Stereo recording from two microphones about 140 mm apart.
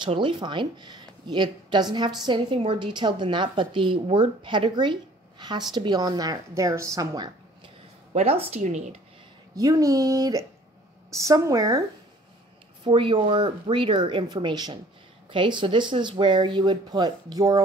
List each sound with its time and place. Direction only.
0.0 s a woman's voice: 35° right (ahead or behind)
8.1 s a woman's voice: 50° right (ahead or behind)
9.6 s speech: 25° right (ahead or behind)
12.8 s a woman's voice: 35° right (ahead or behind)